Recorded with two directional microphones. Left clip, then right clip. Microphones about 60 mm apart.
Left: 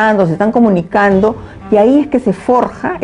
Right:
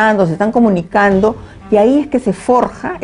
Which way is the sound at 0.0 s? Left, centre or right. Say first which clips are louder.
Left 1 dB; right.